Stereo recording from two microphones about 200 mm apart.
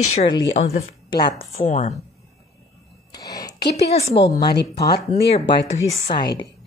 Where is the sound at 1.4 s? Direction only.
40° left (ahead or behind).